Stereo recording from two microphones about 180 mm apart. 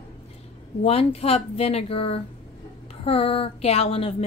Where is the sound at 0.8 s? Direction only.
35° left (ahead or behind).